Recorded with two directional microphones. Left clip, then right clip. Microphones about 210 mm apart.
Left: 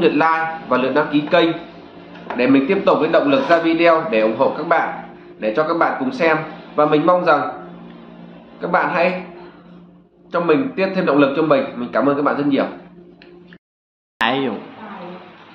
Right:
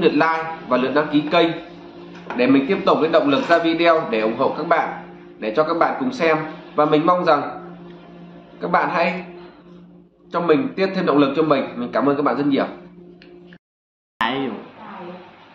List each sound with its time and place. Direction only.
0.0 s a man's voice: 5° left (ahead or behind)
8.5 s a man's voice: 5° left (ahead or behind)
10.3 s a man's voice: 5° left (ahead or behind)
14.2 s speech: 30° left (ahead or behind)